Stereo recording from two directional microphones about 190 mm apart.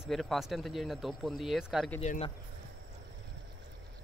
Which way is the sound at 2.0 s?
35° left (ahead or behind).